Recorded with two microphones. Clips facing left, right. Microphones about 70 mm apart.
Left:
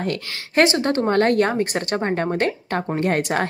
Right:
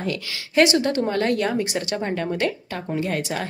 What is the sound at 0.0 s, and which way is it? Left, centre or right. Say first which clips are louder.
Speech: left 2 dB; left.